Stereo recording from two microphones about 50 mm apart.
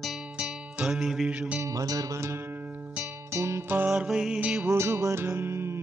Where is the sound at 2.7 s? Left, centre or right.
Right.